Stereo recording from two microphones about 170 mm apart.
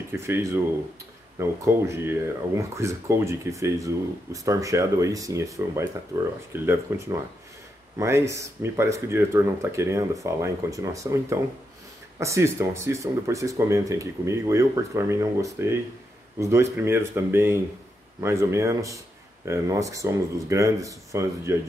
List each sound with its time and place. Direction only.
0.1 s speech: 15° right (ahead or behind)